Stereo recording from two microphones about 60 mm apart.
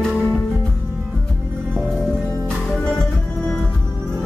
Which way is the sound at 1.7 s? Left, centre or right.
Centre.